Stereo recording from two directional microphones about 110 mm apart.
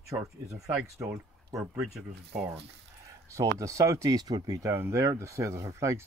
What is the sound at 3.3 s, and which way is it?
Speech, 30° right (ahead or behind).